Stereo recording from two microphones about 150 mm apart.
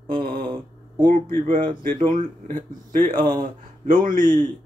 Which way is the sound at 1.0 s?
65° right (ahead or behind).